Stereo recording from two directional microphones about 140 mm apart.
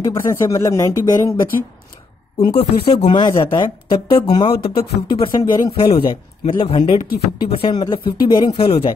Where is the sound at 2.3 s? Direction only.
45° left (ahead or behind).